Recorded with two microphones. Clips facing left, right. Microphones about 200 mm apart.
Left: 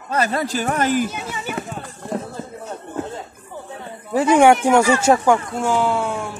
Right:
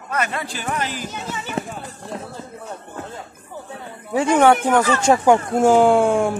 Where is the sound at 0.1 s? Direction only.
35° left (ahead or behind).